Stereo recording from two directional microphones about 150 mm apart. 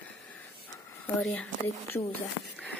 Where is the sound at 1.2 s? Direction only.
10° left (ahead or behind).